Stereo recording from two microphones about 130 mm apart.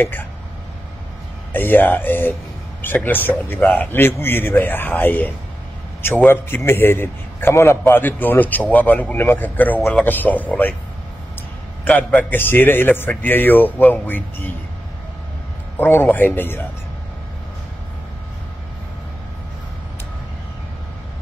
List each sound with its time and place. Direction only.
0.0 s a man's voice: 15° left (ahead or behind)
1.5 s a man's voice: 15° left (ahead or behind)
11.8 s a man's voice: 10° left (ahead or behind)
15.8 s a man's voice: 15° left (ahead or behind)